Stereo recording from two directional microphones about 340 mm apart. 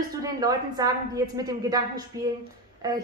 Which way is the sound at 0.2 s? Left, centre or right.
Centre.